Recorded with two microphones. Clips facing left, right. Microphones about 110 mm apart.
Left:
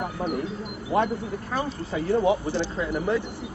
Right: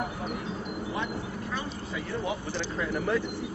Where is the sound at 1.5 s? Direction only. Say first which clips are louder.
Left 8 dB; 40° left (ahead or behind).